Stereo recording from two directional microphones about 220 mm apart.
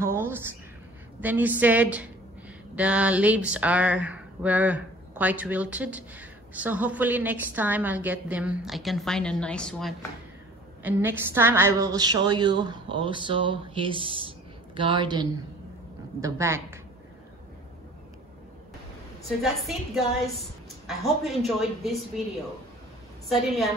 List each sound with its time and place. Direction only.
0.0 s a woman's voice: 10° right (ahead or behind)
10.8 s a woman's voice: 10° right (ahead or behind)
19.2 s a woman's voice: centre (ahead or behind)
23.2 s a woman's voice: centre (ahead or behind)